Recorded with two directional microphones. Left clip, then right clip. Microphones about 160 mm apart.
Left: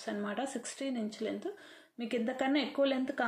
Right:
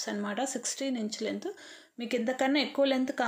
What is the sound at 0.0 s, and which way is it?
Speech, 35° right (ahead or behind).